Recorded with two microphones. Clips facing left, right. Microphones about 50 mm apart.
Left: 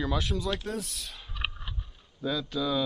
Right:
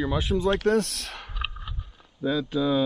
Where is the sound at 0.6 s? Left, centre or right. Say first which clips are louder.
Right 12 dB; right.